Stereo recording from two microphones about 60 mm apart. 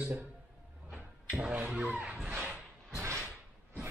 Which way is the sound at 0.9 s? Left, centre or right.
Centre.